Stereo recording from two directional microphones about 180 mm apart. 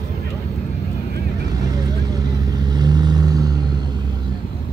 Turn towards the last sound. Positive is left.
turn(degrees=-20)  # may be behind; listen again after turning